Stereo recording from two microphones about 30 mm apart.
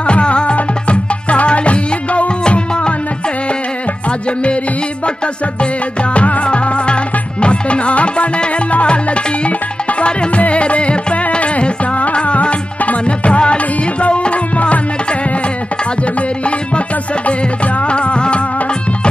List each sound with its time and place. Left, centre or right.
0.0 s music: left
5.0 s music: left
6.1 s music: left
6.4 s music: left
10.0 s music: left
16.0 s tabla: left
17.3 s music: left